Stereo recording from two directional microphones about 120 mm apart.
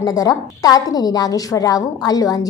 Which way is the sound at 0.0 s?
30° left (ahead or behind).